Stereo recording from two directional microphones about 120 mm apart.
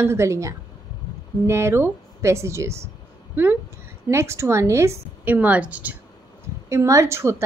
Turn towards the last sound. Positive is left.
turn(degrees=-20)  # may be behind; listen again after turning